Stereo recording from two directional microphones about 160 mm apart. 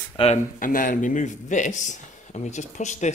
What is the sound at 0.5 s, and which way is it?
Speech, 55° left (ahead or behind).